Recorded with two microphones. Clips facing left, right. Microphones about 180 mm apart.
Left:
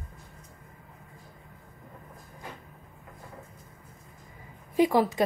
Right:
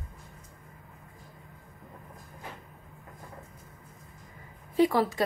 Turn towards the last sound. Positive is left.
turn(degrees=20)  # may be behind; listen again after turning